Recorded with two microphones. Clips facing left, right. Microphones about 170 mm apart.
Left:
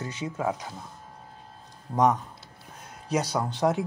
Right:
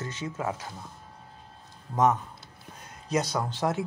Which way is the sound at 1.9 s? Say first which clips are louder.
Left 1 dB; 10° left (ahead or behind).